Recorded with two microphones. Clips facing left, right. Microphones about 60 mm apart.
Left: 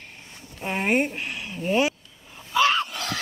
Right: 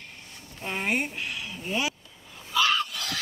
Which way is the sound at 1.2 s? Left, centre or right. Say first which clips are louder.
Left 2 dB; left.